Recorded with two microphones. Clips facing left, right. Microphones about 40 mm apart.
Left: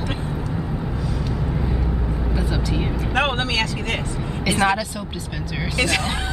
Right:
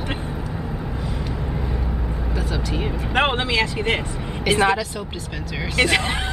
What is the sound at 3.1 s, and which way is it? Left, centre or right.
Speech, right.